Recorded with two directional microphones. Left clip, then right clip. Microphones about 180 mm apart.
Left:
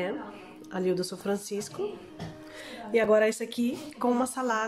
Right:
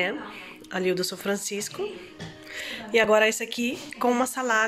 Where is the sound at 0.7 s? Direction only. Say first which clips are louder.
Right 3 dB; 5° left (ahead or behind).